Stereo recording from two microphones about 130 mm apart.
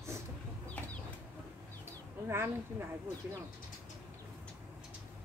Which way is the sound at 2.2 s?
20° right (ahead or behind).